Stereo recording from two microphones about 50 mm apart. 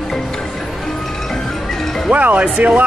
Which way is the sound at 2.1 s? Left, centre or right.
Right.